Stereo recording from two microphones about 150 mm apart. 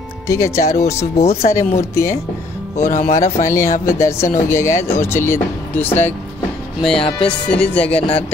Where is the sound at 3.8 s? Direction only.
20° left (ahead or behind).